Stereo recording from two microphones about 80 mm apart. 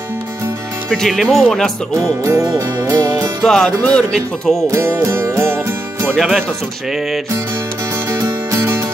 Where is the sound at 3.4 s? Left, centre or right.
Centre.